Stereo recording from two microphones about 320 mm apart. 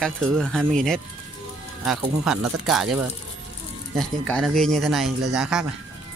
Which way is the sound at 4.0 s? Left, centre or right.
Centre.